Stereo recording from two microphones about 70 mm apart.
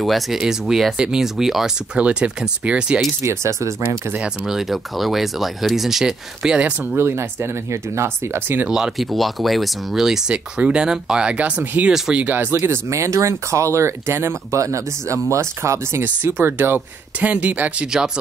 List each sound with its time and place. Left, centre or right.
0.0 s speech: centre
2.0 s speech: centre
3.2 s speech: right
3.8 s speech: right
4.2 s speech: centre
6.9 s speech: right
8.6 s speech: centre; by 12.5 s right
12.5 s speech: right
14.6 s speech: right
16.0 s speech: right; by 18.2 s centre